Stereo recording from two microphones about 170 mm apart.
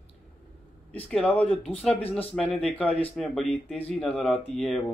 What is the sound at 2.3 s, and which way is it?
Speech, 5° left (ahead or behind).